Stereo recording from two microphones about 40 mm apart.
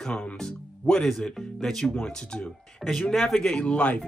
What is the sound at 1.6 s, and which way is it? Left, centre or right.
Speech, centre.